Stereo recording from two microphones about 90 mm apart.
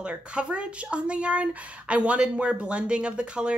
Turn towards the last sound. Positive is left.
turn(degrees=-10)  # may be behind; listen again after turning